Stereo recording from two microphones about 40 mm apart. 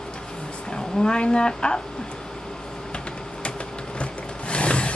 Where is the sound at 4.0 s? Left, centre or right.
Left.